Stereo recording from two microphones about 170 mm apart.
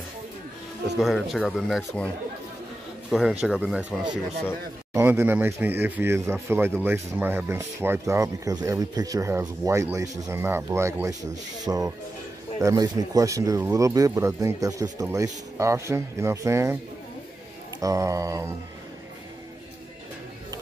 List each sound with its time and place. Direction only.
0.9 s speech: centre (ahead or behind)
3.1 s speech: centre (ahead or behind)
4.9 s speech: 15° right (ahead or behind)
17.7 s speech: 20° right (ahead or behind)